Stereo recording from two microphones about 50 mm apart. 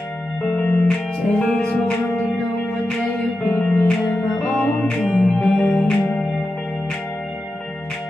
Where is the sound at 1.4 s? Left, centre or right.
Centre.